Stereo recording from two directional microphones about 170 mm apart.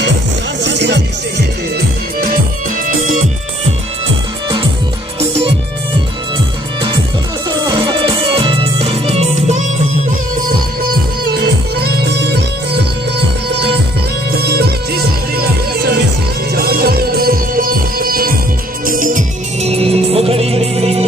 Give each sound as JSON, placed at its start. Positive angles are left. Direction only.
{"t": 0.7, "sound": "music", "side_deg": -90}
{"t": 3.0, "sound": "music", "side_deg": -45}
{"t": 7.4, "sound": "music", "side_deg": -25}
{"t": 11.2, "sound": "music", "side_deg": -70}
{"t": 14.3, "sound": "music", "side_deg": -70}